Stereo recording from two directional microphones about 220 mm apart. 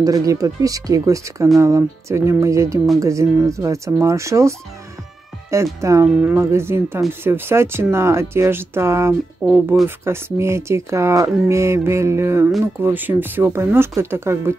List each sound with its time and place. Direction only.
0.0 s speech: 15° right (ahead or behind)